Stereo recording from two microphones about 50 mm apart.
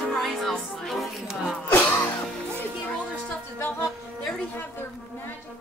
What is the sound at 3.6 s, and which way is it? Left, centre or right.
Music, left.